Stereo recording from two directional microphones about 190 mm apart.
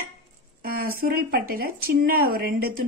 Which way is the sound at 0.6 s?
50° right (ahead or behind).